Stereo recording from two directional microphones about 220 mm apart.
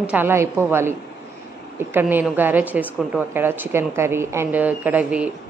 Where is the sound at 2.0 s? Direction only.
10° right (ahead or behind).